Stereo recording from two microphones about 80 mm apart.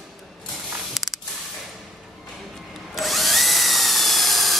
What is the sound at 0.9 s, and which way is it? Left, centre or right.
Spray, centre.